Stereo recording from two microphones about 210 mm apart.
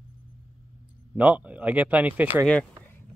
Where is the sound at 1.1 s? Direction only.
5° right (ahead or behind).